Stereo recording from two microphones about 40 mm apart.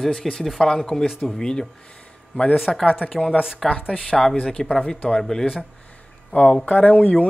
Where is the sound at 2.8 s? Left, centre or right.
Left.